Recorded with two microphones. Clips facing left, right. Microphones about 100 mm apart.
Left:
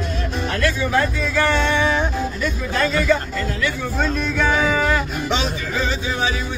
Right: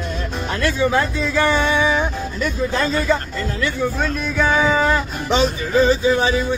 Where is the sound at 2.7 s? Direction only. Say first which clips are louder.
Left 2 dB; 20° right (ahead or behind).